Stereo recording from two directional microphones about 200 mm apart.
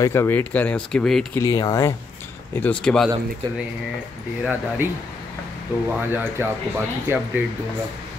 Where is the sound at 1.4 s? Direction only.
15° left (ahead or behind).